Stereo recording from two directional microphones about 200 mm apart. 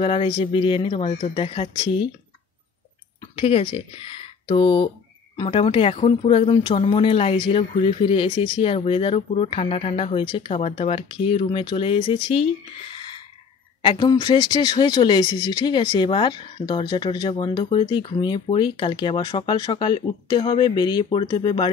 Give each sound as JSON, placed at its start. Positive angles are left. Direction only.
{"t": 0.0, "sound": "speech", "side_deg": 30}
{"t": 3.2, "sound": "speech", "side_deg": 30}
{"t": 12.9, "sound": "a sound", "side_deg": 25}
{"t": 13.8, "sound": "speech", "side_deg": 20}